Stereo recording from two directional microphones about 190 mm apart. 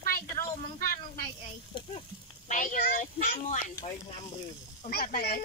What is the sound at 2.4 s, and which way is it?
Speech, 45° left (ahead or behind).